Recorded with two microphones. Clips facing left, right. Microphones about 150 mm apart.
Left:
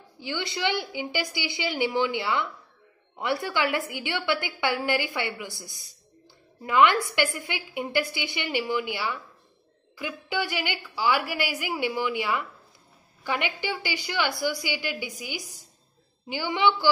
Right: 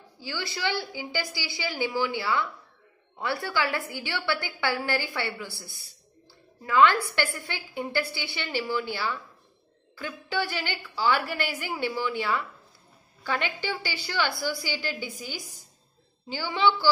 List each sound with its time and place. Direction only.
0.2 s a woman's voice: 20° left (ahead or behind)